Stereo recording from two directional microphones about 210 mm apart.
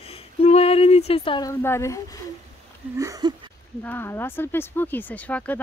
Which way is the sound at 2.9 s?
15° right (ahead or behind).